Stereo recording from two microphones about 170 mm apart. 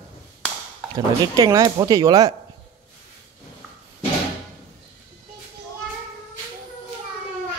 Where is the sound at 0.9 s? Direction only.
20° right (ahead or behind).